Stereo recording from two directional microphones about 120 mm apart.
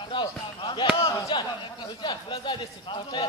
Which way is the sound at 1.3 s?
40° left (ahead or behind).